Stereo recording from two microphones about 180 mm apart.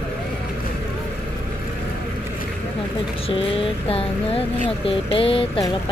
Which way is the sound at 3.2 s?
30° left (ahead or behind).